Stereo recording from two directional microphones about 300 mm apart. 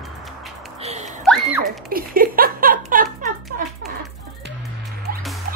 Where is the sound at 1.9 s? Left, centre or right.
Right.